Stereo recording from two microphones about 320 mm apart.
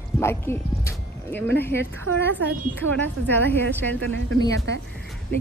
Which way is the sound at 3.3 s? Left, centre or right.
Centre.